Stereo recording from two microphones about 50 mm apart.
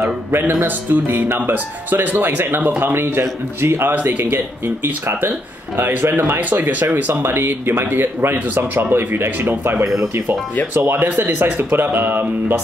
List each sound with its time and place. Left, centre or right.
0.0 s speech: right
2.8 s speech: right
3.9 s speech: right
7.2 s speech: right
11.1 s speech: right